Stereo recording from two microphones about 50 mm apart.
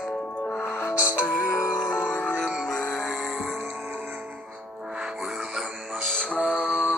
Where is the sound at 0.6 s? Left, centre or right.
Left.